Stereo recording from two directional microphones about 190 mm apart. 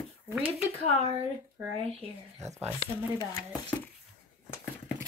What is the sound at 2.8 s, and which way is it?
Speech, 20° left (ahead or behind).